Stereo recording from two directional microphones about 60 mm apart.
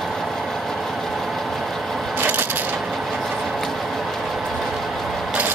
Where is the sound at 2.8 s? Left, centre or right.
Centre.